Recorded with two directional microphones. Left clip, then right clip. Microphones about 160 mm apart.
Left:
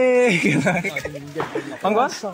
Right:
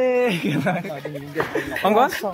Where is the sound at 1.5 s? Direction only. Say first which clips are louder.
Right 2 dB; 35° right (ahead or behind).